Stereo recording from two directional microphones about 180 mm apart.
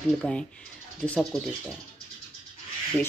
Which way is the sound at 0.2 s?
5° left (ahead or behind).